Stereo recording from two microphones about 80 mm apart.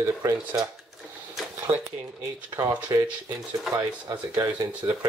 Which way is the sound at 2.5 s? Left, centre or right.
Right.